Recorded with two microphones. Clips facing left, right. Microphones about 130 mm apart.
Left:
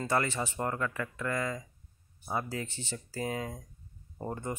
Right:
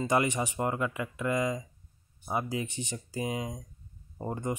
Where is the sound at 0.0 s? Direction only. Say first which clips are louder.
Right 3 dB; 15° right (ahead or behind).